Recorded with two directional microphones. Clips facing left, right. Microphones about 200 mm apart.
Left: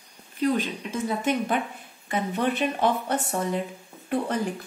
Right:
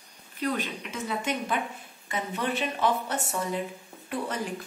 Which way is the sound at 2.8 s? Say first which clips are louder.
Left 3 dB; 55° left (ahead or behind).